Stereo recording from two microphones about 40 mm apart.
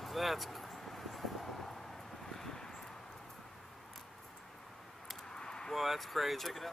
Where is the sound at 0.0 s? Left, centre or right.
Centre.